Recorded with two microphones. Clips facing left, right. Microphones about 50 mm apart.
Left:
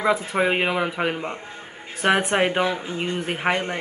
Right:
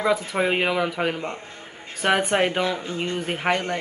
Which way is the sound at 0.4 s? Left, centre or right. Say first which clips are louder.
Even; centre.